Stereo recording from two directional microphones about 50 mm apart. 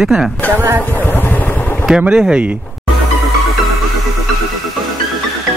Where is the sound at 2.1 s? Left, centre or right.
Centre.